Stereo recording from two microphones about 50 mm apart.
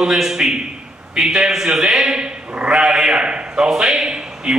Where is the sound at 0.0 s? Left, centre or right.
Centre.